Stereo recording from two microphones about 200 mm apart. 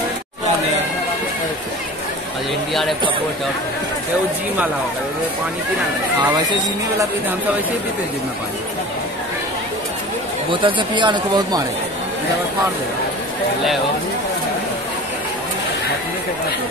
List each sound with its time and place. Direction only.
10.5 s speech: 25° right (ahead or behind)